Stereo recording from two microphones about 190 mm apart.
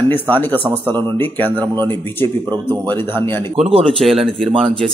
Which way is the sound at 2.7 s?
10° left (ahead or behind).